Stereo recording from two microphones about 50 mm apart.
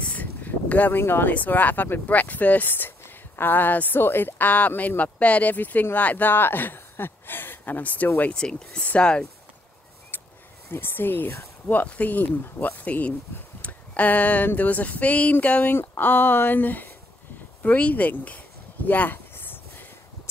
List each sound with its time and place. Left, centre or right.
0.0 s a sound: left
1.0 s speech: left
1.3 s speech: left
8.3 s speech: centre
10.7 s speech: left
16.0 s speech: left
18.9 s a sound: left